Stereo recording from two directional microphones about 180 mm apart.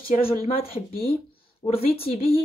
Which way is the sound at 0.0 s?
55° left (ahead or behind).